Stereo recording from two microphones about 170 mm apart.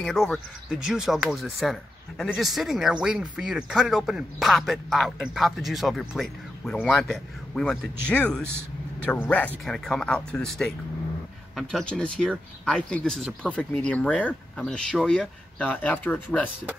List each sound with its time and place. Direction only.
0.0 s speech: centre (ahead or behind)